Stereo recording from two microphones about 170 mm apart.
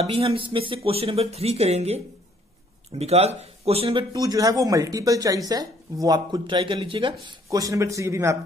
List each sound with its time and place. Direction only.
0.0 s speech: 35° right (ahead or behind)
4.1 s speech: 20° right (ahead or behind)
7.4 s a man's voice: 20° right (ahead or behind)